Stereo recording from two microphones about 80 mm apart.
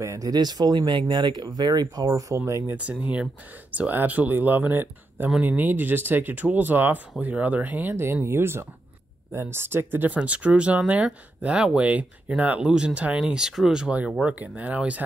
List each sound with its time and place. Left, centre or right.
0.0 s speech: right
0.3 s speech: right
2.7 s speech: centre